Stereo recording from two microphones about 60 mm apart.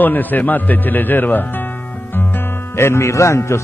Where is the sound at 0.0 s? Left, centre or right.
Left.